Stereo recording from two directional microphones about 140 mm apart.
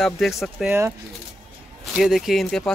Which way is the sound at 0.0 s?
Centre (ahead or behind).